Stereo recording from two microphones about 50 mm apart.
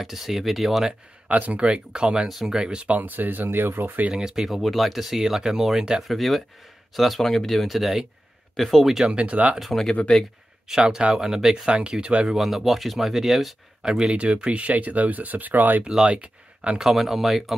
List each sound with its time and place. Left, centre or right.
0.0 s speech: centre
1.3 s speech: right
3.0 s speech: right
4.1 s speech: centre
6.0 s speech: centre
8.5 s speech: centre
9.1 s speech: right
9.6 s speech: centre
10.1 s speech: centre
10.8 s speech: centre
12.3 s speech: centre
14.1 s speech: right
15.8 s speech: centre
16.7 s speech: centre